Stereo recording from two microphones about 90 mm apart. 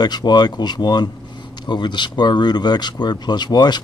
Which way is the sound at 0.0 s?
50° left (ahead or behind).